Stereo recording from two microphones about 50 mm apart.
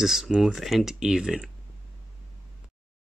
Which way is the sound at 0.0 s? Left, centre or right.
Centre.